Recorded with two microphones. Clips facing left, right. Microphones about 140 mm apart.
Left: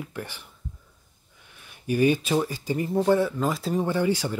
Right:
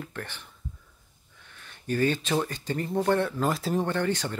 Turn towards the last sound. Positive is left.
turn(degrees=10)  # may be behind; listen again after turning